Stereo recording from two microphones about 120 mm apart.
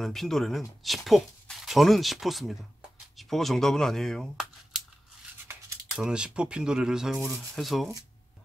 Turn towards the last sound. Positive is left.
turn(degrees=0)  # may be behind; listen again after turning